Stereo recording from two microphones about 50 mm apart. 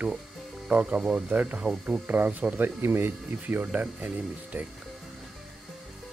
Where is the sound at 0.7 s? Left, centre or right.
Right.